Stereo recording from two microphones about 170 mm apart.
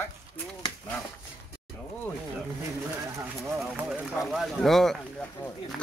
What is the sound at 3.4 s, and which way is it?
Speech, 15° right (ahead or behind).